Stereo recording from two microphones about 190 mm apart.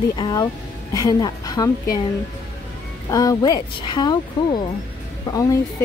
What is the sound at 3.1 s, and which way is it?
A woman's voice, 20° left (ahead or behind).